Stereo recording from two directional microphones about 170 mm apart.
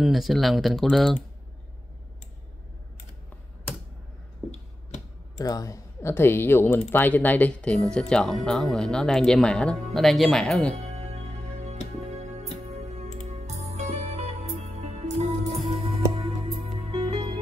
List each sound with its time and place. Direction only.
0.0 s speech: centre (ahead or behind)
5.4 s speech: 20° left (ahead or behind); by 10.7 s 5° left (ahead or behind)
10.7 s music: 40° right (ahead or behind)